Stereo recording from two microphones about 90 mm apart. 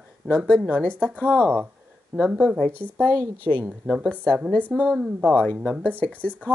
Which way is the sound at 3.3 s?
15° left (ahead or behind).